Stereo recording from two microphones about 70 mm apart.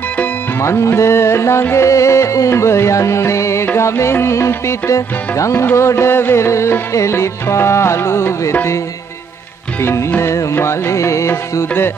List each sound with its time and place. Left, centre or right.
0.6 s music: left
9.8 s music: left